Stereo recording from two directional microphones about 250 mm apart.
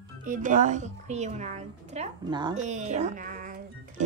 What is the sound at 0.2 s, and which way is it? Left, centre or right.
Speech, right.